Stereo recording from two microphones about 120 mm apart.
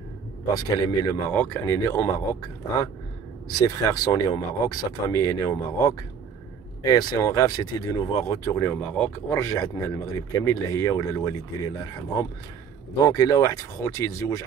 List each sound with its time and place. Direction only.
0.5 s speech: 35° left (ahead or behind)
1.2 s speech: 20° left (ahead or behind)
8.7 s speech: 10° left (ahead or behind)
9.3 s speech: 25° left (ahead or behind)